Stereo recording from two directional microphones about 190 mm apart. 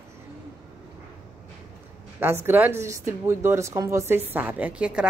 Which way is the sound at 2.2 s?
10° right (ahead or behind).